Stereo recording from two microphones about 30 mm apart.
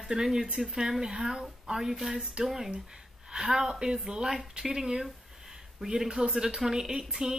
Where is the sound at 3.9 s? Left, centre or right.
Right.